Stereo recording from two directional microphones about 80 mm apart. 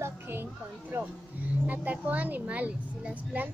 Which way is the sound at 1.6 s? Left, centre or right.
Right.